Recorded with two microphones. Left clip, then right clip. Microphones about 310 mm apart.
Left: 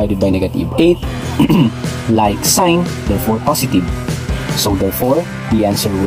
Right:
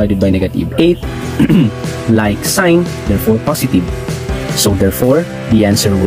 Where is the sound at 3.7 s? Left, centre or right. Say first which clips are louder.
Right 1 dB; centre.